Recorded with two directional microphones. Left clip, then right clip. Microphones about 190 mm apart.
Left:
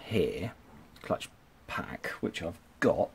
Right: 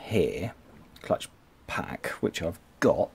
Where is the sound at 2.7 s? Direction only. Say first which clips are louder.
Right 3 dB; 15° right (ahead or behind).